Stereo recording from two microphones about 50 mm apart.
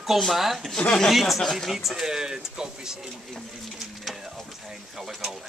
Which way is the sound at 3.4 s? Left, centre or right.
Centre.